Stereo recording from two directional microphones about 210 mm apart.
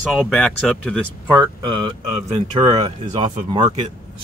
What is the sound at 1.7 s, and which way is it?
A man's voice, 30° right (ahead or behind).